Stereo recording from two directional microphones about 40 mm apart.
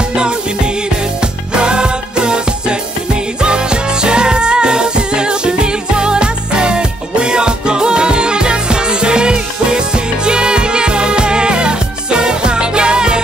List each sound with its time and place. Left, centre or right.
1.2 s music: right